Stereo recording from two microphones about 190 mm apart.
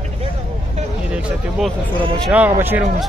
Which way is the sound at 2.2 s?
10° right (ahead or behind).